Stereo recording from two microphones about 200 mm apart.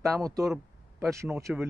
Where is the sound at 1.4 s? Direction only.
10° right (ahead or behind).